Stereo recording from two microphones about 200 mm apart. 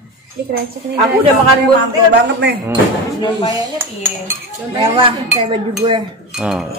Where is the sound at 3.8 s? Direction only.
10° right (ahead or behind).